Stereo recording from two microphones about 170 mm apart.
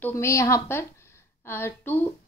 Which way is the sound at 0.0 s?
15° left (ahead or behind).